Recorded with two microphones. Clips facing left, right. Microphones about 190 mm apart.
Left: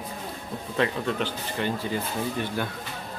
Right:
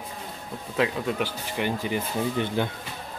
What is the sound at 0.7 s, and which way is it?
Speech, 5° right (ahead or behind).